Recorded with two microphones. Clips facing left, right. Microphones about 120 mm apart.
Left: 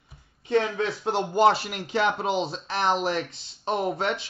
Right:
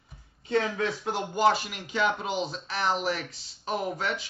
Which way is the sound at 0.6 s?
25° left (ahead or behind).